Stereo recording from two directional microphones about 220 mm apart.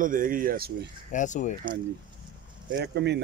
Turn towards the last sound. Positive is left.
turn(degrees=-50)  # may be behind; listen again after turning